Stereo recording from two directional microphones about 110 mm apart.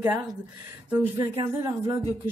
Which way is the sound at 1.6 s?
30° right (ahead or behind).